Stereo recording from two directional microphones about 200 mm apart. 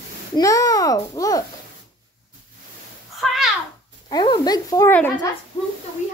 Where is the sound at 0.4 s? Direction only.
15° left (ahead or behind).